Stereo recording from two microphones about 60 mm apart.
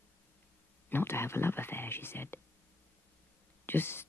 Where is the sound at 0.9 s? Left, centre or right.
Left.